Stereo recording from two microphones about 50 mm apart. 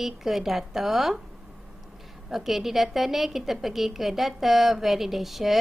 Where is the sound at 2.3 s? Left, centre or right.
Centre.